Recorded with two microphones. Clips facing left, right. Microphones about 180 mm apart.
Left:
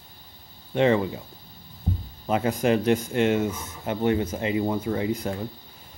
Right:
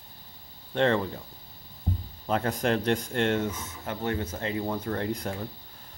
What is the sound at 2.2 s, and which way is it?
Speech, 5° left (ahead or behind).